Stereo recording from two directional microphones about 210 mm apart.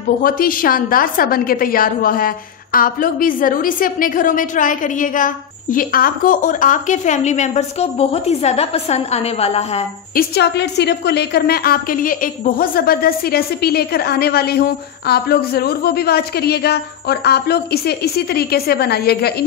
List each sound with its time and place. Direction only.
0.2 s a woman's voice: 45° left (ahead or behind)
10.1 s a woman's voice: 50° left (ahead or behind)